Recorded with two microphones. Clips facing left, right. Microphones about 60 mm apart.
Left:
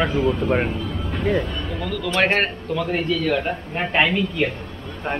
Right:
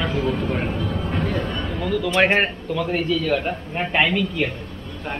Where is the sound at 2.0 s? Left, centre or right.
Centre.